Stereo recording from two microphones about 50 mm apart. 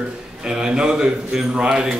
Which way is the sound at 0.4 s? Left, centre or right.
Centre.